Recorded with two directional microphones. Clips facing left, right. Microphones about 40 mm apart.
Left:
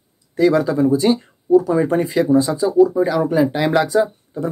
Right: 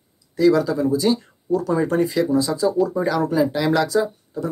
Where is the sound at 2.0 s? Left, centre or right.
Left.